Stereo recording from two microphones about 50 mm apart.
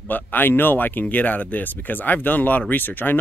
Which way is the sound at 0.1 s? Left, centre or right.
Left.